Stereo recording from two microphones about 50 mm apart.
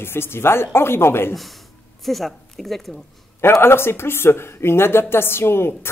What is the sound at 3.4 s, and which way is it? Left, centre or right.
A woman's voice, left.